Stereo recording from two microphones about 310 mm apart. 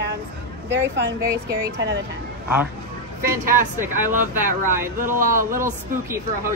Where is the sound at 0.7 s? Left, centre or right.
Right.